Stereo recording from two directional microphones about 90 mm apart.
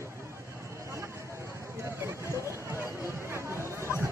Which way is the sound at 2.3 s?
30° right (ahead or behind).